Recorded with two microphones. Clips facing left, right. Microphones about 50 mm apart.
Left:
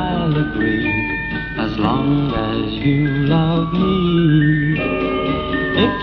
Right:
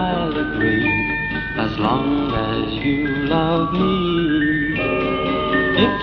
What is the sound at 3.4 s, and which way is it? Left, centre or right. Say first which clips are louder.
Music: even; centre.